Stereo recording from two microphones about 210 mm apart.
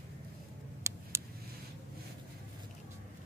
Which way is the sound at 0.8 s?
15° right (ahead or behind).